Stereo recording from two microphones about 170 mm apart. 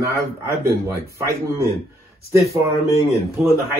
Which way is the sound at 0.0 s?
15° right (ahead or behind).